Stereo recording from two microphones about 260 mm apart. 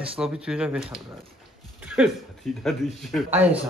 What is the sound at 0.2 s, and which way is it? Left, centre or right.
Speech, centre.